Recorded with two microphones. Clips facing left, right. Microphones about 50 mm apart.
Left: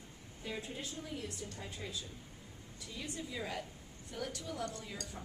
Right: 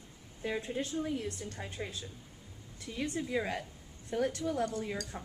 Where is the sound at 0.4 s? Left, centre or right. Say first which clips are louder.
Right 8 dB; right.